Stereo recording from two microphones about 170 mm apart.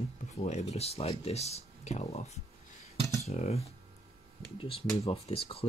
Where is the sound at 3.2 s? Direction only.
40° left (ahead or behind).